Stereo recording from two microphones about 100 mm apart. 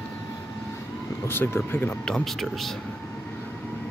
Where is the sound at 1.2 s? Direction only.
25° left (ahead or behind).